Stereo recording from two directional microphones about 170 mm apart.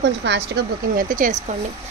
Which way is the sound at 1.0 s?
50° right (ahead or behind).